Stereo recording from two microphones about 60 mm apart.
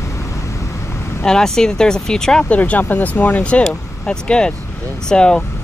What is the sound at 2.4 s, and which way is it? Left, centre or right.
Speech, left.